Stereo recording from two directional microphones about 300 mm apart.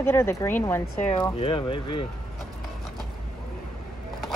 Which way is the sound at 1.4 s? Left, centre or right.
Centre.